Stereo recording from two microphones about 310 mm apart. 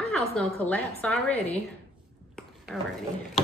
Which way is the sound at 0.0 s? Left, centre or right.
Centre.